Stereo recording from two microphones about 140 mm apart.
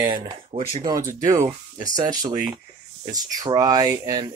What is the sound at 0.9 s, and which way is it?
Speech, 20° right (ahead or behind).